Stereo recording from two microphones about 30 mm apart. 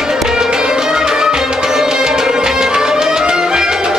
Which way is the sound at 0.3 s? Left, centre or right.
Right.